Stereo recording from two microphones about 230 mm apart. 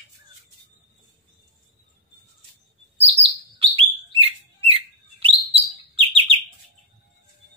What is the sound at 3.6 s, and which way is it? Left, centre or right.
Bird, right.